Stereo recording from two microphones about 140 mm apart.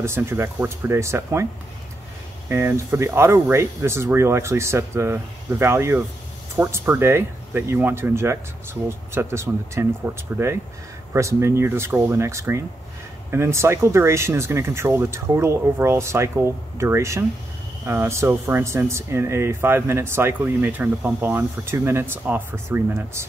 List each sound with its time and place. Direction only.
0.0 s speech: 20° right (ahead or behind)